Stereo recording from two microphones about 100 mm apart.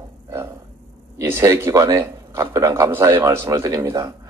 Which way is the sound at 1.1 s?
35° right (ahead or behind).